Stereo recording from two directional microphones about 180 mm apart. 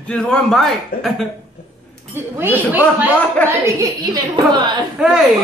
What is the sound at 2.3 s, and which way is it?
A woman's voice, 10° right (ahead or behind).